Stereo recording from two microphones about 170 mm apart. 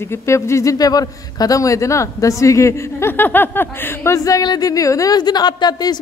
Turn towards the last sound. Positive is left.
turn(degrees=25)  # may be behind; listen again after turning